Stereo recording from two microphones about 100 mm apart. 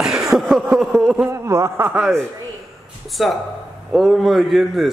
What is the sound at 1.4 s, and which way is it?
Speech, 30° right (ahead or behind).